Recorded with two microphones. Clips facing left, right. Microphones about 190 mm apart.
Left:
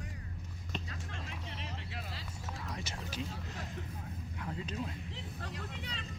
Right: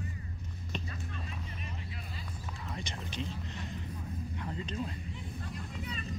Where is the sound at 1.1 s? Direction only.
90° left.